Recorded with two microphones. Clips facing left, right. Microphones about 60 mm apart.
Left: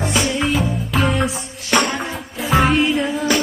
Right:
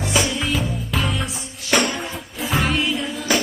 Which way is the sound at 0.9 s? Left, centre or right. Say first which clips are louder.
Left 7 dB; centre.